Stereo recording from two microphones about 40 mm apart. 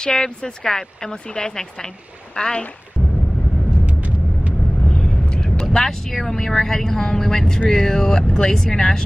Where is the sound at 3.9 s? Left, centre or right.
Right.